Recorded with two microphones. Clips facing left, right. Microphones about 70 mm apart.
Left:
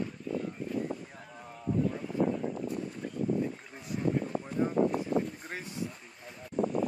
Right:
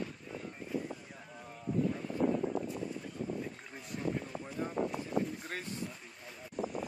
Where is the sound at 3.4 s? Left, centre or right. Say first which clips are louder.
Left 7 dB; centre.